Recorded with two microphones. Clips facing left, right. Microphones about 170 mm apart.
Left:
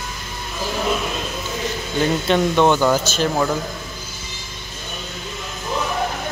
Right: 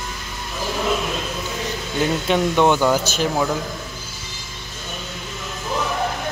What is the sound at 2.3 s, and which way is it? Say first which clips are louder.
Speech: left 1 dB; 10° right (ahead or behind).